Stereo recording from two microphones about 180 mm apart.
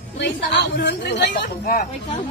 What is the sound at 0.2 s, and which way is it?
A woman's voice, 80° left.